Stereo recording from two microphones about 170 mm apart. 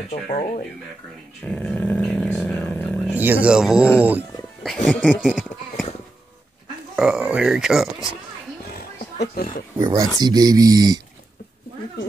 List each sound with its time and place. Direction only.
0.1 s speech: 60° left (ahead or behind)
1.4 s dog: 10° left (ahead or behind)
3.2 s speech: 10° right (ahead or behind)
7.0 s speech: 5° right (ahead or behind)
8.7 s a sound: 60° left (ahead or behind)
9.8 s speech: 20° right (ahead or behind)